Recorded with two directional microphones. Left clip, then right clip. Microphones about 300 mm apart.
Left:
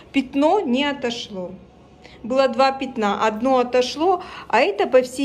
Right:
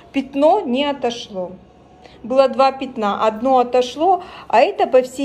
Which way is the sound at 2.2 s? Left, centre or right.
Centre.